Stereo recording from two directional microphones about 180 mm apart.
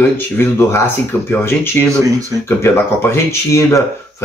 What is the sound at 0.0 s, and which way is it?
Speech, 15° left (ahead or behind).